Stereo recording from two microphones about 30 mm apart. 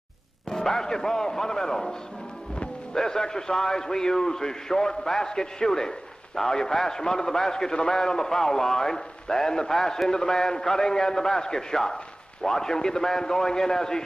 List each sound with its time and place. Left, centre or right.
0.5 s a man's voice: centre